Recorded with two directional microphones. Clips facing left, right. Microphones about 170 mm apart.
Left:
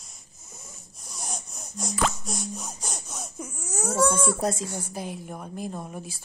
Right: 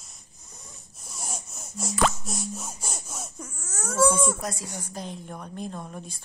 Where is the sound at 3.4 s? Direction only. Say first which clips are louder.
Left 8 dB; 10° left (ahead or behind).